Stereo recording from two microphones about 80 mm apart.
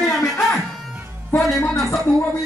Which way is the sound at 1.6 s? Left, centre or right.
Left.